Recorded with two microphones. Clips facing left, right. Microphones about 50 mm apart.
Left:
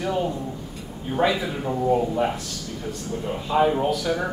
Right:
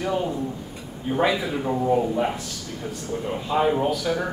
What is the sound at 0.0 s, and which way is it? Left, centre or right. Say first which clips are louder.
A man's voice: even; centre.